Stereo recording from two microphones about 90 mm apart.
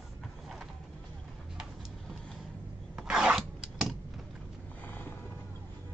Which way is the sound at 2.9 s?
10° right (ahead or behind).